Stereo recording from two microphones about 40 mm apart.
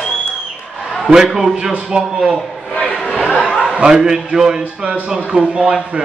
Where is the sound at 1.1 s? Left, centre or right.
Centre.